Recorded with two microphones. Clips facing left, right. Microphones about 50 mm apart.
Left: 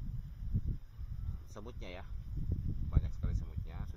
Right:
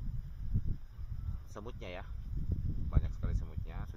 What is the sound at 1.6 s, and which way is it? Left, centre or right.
Speech, right.